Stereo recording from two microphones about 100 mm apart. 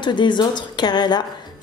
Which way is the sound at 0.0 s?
50° left (ahead or behind).